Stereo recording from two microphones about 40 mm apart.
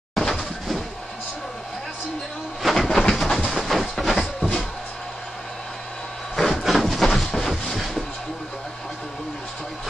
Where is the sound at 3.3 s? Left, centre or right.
Centre.